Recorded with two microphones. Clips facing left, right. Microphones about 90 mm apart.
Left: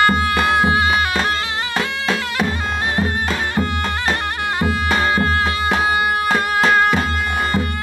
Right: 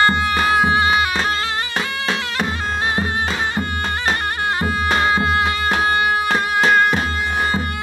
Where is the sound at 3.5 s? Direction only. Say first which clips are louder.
Left 2 dB; 15° right (ahead or behind).